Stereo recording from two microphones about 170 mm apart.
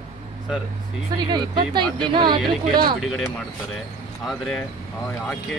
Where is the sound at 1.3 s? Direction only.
25° right (ahead or behind).